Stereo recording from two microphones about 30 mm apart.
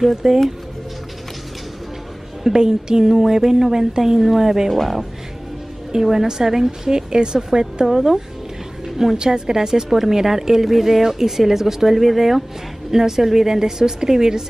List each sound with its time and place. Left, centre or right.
0.1 s speech: centre
2.4 s a woman's voice: right
4.7 s speech: centre
6.2 s a woman's voice: centre
7.8 s speech: centre
8.8 s a sound: centre
9.1 s a woman's voice: right
9.8 s speech: centre